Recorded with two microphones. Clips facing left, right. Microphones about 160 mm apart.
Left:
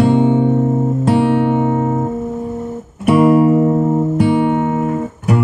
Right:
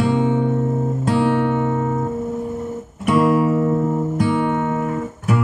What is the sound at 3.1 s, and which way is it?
Music, 55° left (ahead or behind).